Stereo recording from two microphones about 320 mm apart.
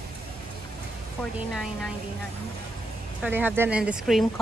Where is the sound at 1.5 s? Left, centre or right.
Centre.